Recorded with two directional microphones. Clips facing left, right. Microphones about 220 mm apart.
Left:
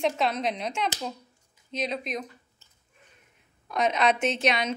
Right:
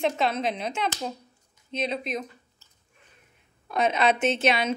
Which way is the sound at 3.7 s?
5° right (ahead or behind).